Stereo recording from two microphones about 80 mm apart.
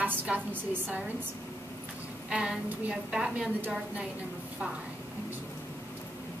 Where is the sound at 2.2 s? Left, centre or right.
Centre.